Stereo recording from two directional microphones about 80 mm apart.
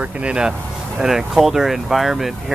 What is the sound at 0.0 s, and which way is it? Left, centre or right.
Speech, centre.